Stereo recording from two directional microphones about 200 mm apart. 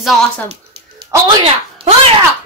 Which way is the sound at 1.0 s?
25° right (ahead or behind).